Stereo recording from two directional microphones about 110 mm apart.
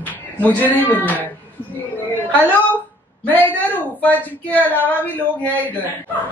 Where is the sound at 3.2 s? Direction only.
15° left (ahead or behind).